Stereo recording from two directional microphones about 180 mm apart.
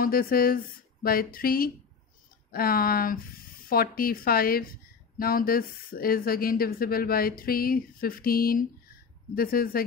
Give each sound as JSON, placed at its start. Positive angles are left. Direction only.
{"t": 0.0, "sound": "speech", "side_deg": 55}